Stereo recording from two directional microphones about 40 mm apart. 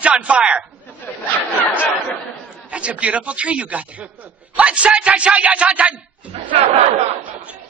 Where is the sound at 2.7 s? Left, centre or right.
Right.